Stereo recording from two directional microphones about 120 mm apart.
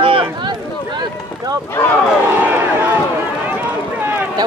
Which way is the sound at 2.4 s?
15° right (ahead or behind).